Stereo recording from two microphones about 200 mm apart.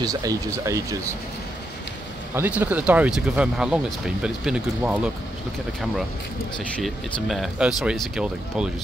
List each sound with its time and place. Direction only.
0.0 s speech: 15° right (ahead or behind)
2.3 s speech: 10° right (ahead or behind)
6.8 s speech: centre (ahead or behind)